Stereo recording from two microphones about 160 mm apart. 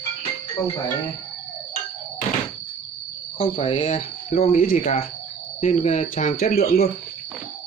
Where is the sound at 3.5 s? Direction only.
35° left (ahead or behind); by 4.9 s 60° left (ahead or behind).